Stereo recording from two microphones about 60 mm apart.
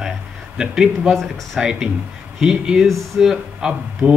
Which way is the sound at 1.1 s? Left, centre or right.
Centre.